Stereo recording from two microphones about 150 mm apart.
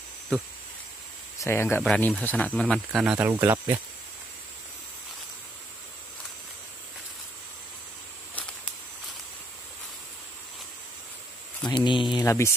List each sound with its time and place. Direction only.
1.4 s speech: 15° left (ahead or behind); by 3.7 s 15° right (ahead or behind)
11.7 s speech: 30° left (ahead or behind)
12.3 s speech: 20° left (ahead or behind)